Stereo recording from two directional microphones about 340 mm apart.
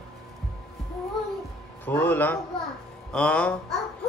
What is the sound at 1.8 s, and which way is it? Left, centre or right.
A man's voice, centre.